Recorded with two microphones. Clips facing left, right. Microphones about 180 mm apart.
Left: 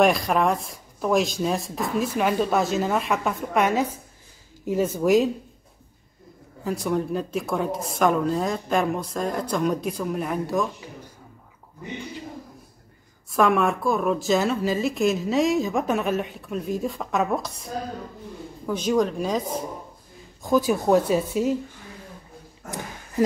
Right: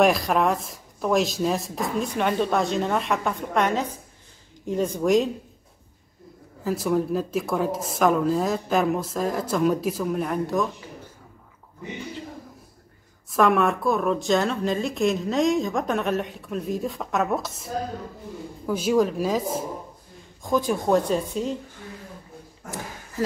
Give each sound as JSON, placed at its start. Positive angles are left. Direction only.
{"t": 0.0, "sound": "a woman's voice", "side_deg": 0}
{"t": 6.6, "sound": "a woman's voice", "side_deg": 0}
{"t": 13.3, "sound": "a woman's voice", "side_deg": 0}
{"t": 23.2, "sound": "speech", "side_deg": 15}